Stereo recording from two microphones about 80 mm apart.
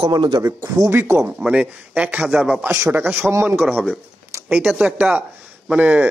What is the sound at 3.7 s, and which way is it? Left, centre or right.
Speech, centre.